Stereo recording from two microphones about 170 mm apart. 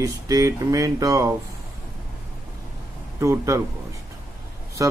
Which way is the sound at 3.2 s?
15° right (ahead or behind).